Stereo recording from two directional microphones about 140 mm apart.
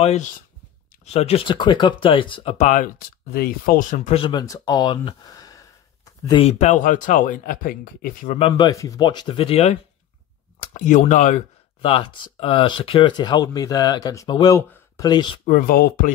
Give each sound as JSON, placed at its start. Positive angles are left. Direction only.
{"t": 0.0, "sound": "speech", "side_deg": 55}
{"t": 2.6, "sound": "speech", "side_deg": 65}
{"t": 4.2, "sound": "speech", "side_deg": 30}
{"t": 6.3, "sound": "speech", "side_deg": 50}
{"t": 8.4, "sound": "speech", "side_deg": 40}
{"t": 8.6, "sound": "speech", "side_deg": 25}
{"t": 10.6, "sound": "speech", "side_deg": 65}
{"t": 15.4, "sound": "speech", "side_deg": 80}